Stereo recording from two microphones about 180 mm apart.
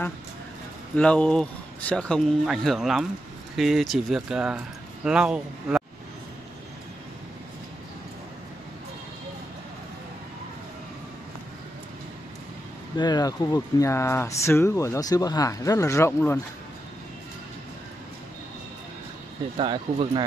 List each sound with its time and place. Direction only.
0.9 s speech: 5° left (ahead or behind)
12.9 s speech: 25° left (ahead or behind)
19.5 s speech: 30° right (ahead or behind)